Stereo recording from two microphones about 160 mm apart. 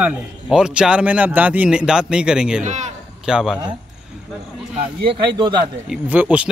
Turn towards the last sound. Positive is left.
turn(degrees=-10)  # may be behind; listen again after turning